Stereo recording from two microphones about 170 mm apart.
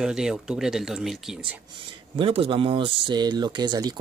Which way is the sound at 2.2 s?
30° right (ahead or behind).